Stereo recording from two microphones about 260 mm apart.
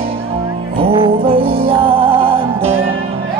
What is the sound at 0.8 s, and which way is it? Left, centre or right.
Music, right.